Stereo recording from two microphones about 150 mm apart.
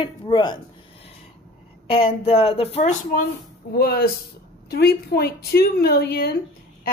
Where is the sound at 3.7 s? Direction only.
90° left.